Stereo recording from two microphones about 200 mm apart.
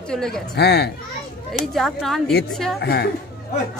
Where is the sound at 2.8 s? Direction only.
55° left (ahead or behind).